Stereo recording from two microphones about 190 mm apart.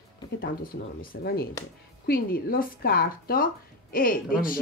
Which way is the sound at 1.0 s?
50° left (ahead or behind).